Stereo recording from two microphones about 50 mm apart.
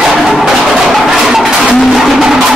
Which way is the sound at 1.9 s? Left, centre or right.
Centre.